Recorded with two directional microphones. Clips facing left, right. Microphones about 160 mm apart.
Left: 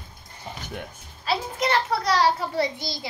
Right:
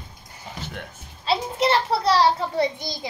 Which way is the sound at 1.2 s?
30° right (ahead or behind).